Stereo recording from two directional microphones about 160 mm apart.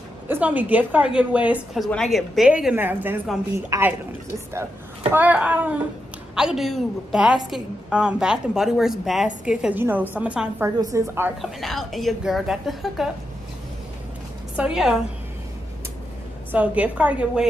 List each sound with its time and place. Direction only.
0.3 s a woman's voice: 10° right (ahead or behind)
3.7 s a woman's voice: 25° right (ahead or behind)
5.1 s a woman's voice: 10° right (ahead or behind)
10.8 s a woman's voice: 20° right (ahead or behind)
11.6 s a woman's voice: centre (ahead or behind)
14.6 s a woman's voice: 5° right (ahead or behind)
16.5 s a woman's voice: 10° right (ahead or behind)